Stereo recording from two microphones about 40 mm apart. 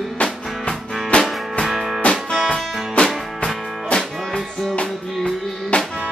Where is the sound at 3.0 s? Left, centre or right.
Left.